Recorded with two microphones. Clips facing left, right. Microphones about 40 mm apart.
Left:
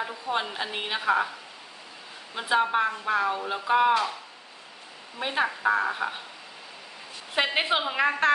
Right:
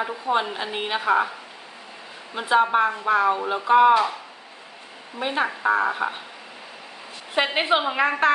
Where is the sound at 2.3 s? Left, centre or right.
Centre.